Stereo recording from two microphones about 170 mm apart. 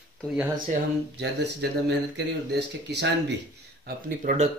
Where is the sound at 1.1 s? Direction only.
85° right.